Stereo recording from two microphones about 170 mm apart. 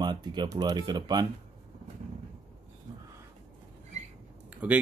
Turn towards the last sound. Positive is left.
turn(degrees=-10)  # may be behind; listen again after turning